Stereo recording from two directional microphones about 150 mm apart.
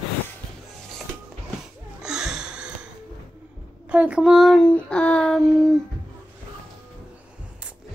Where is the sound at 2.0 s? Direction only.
5° right (ahead or behind).